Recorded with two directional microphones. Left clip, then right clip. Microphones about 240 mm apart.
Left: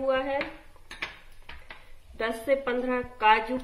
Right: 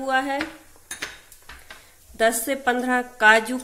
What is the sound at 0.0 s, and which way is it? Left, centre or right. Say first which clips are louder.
Speech: right 4 dB; right.